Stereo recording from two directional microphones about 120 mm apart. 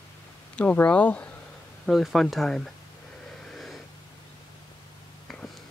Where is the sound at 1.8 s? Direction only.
Centre (ahead or behind).